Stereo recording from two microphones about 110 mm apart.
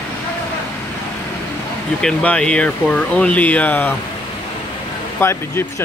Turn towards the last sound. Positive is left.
turn(degrees=20)  # may be behind; listen again after turning